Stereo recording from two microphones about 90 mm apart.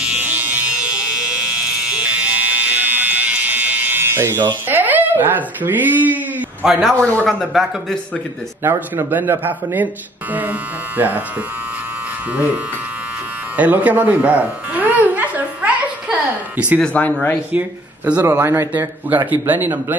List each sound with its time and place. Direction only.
0.2 s electric shaver: 20° right (ahead or behind)
4.6 s speech: 20° right (ahead or behind)
6.6 s speech: 5° right (ahead or behind)
7.0 s speech: 20° left (ahead or behind)
7.2 s speech: centre (ahead or behind)
8.6 s a man's voice: 25° right (ahead or behind)
11.0 s a man's voice: 20° right (ahead or behind)
13.6 s electric shaver: 15° right (ahead or behind)
16.8 s speech: 15° left (ahead or behind)
17.5 s speech: 15° right (ahead or behind)
18.4 s a man's voice: 30° right (ahead or behind)